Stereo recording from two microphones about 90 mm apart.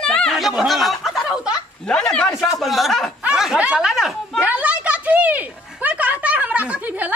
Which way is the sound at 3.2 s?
5° right (ahead or behind).